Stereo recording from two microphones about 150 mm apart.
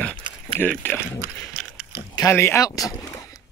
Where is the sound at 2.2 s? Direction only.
15° left (ahead or behind).